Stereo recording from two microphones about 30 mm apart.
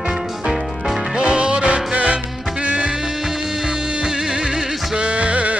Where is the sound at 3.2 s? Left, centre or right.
Right.